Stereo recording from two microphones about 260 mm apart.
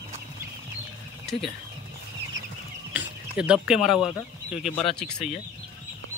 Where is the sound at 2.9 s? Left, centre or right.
Centre.